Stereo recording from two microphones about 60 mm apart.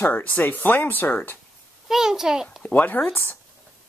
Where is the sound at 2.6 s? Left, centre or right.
Left.